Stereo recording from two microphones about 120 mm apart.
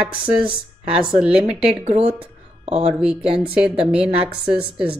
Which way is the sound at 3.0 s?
5° right (ahead or behind).